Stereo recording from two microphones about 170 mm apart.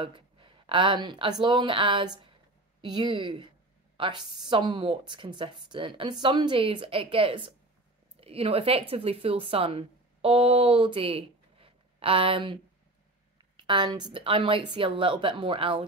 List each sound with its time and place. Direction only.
0.0 s a woman's voice: 30° right (ahead or behind)